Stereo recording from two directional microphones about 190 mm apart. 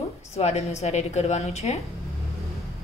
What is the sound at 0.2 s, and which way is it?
A woman's voice, 35° left (ahead or behind).